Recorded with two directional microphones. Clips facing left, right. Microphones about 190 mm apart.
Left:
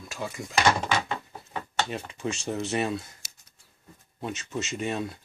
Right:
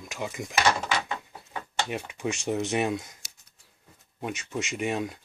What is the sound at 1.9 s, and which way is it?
Speech, 15° right (ahead or behind).